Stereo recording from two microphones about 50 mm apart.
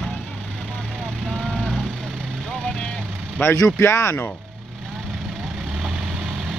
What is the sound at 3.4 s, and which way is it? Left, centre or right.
Speech, left.